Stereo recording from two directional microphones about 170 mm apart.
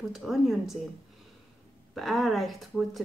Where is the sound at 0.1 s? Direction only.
Centre (ahead or behind).